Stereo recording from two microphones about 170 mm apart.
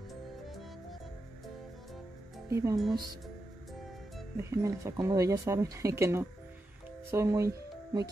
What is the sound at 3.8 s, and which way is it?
Music, centre (ahead or behind).